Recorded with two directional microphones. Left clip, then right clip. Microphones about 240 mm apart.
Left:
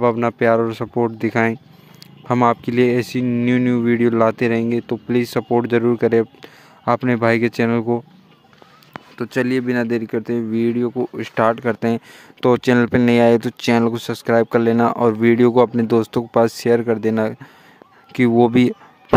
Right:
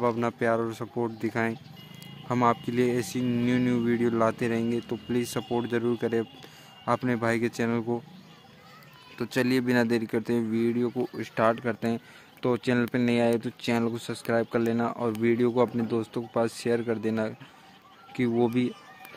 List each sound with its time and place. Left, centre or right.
0.0 s speech: left
9.1 s speech: left